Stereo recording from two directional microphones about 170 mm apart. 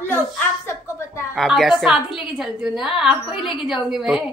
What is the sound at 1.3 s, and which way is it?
A woman's voice, centre (ahead or behind).